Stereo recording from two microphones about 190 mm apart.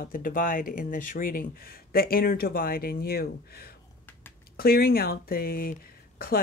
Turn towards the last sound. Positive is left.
turn(degrees=50)  # may be behind; listen again after turning